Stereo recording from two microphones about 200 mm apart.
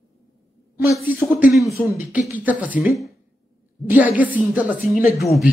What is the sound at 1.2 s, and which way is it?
A man's voice, 5° right (ahead or behind).